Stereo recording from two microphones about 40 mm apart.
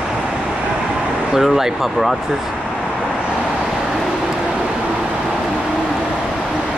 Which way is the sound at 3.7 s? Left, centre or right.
Centre.